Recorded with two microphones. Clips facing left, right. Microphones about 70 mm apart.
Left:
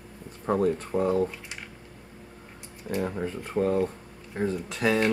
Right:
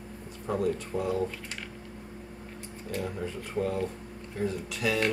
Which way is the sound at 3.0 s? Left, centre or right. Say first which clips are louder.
Left 5 dB; left.